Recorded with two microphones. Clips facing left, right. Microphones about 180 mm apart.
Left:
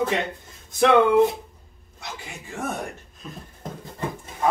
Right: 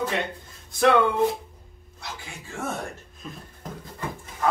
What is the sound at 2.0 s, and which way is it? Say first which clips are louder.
Speech: left 2 dB; 15° left (ahead or behind).